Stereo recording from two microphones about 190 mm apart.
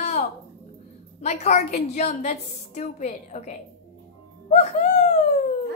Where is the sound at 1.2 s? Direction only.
35° left (ahead or behind).